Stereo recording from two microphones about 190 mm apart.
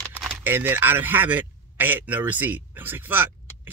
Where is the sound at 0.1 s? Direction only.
10° right (ahead or behind).